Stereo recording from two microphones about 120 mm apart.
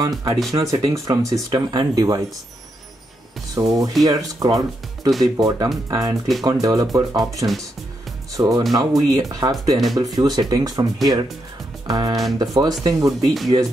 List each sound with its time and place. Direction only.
0.0 s speech: 35° right (ahead or behind)
3.5 s speech: 30° right (ahead or behind)
11.9 s speech: 35° right (ahead or behind)
13.2 s speech: centre (ahead or behind)